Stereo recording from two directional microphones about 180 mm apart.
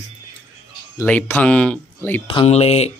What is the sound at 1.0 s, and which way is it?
Speech, 10° left (ahead or behind).